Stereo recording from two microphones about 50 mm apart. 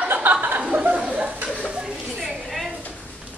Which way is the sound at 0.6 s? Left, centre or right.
Right.